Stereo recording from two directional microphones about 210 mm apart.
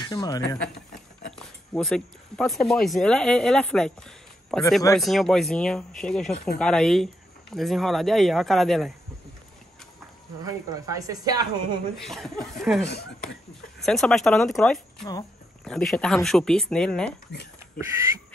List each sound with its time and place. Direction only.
0.0 s speech: 20° left (ahead or behind)
1.3 s speech: centre (ahead or behind)
10.4 s speech: 15° right (ahead or behind)
12.0 s speech: centre (ahead or behind)
12.8 s speech: 50° left (ahead or behind)
13.7 s speech: centre (ahead or behind)
17.3 s speech: 55° left (ahead or behind)